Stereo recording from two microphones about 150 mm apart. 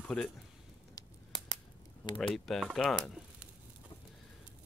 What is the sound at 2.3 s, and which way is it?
Speech, centre (ahead or behind).